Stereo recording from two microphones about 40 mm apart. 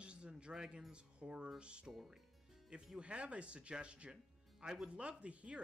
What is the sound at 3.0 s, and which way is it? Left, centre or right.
Speech, right.